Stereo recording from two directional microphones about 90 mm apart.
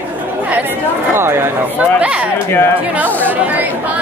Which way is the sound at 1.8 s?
15° right (ahead or behind).